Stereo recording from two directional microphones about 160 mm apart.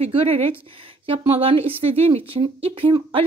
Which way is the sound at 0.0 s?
40° right (ahead or behind).